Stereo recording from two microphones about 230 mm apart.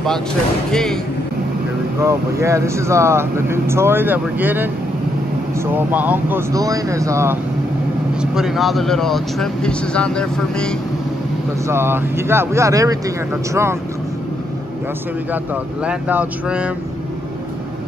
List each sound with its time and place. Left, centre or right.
0.7 s speech: centre
2.0 s speech: centre
5.7 s speech: centre
8.2 s speech: centre
11.6 s speech: centre
15.8 s speech: centre